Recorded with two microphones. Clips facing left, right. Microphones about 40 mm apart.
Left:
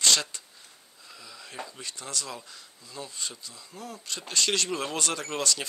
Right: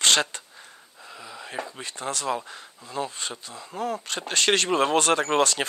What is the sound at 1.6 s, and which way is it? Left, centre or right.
Speech, right.